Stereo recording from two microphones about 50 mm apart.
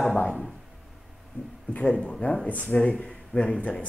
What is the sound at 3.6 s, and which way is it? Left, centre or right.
Speech, left.